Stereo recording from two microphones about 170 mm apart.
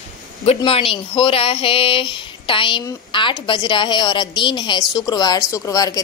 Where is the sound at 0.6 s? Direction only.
35° left (ahead or behind).